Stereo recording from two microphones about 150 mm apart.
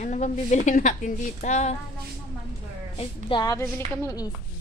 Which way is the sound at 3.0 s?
30° left (ahead or behind).